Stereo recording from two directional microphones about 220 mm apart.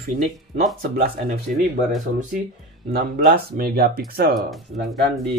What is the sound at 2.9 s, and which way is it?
Speech, 45° right (ahead or behind).